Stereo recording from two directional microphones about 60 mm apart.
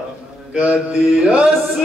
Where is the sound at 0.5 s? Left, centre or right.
Centre.